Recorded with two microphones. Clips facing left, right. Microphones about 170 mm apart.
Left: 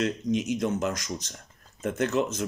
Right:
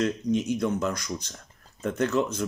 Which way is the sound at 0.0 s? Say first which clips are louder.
Right 1 dB; 20° left (ahead or behind).